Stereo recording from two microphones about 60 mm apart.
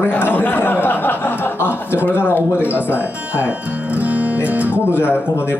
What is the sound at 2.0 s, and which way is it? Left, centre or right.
Speech, left.